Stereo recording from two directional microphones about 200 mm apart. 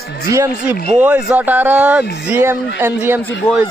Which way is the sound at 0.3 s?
10° right (ahead or behind).